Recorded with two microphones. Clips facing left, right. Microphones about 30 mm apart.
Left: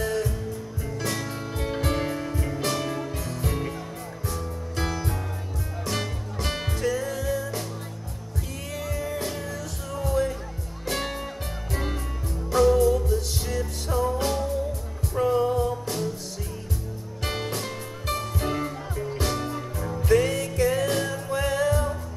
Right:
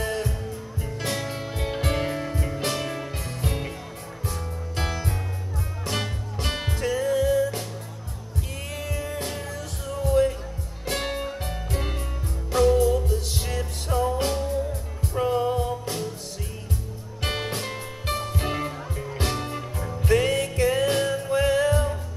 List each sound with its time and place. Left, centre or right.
0.0 s music: right
3.2 s music: right
4.7 s music: right
6.8 s music: right
8.8 s music: right
9.8 s music: centre
12.8 s music: right
17.2 s music: right
21.3 s music: right